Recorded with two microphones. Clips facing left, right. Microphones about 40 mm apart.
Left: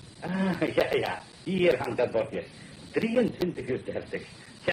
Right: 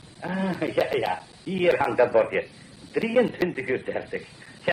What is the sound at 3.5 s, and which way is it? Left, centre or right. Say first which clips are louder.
Speech: right 4 dB; right.